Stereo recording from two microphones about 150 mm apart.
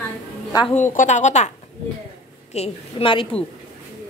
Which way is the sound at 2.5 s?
40° left (ahead or behind).